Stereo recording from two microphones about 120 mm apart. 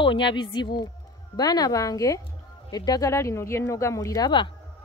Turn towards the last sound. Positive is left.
turn(degrees=35)  # may be behind; listen again after turning